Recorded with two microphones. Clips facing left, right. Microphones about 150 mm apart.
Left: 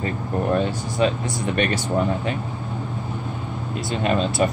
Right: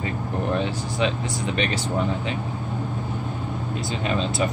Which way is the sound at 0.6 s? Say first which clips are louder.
Left 3 dB; 45° left (ahead or behind).